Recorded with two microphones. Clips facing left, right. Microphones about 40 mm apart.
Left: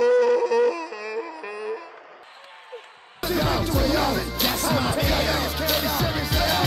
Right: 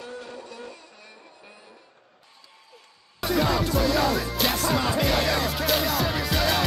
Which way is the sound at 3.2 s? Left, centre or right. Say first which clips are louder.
Even; centre.